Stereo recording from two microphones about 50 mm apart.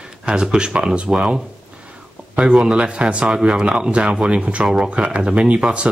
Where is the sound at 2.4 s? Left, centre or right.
Centre.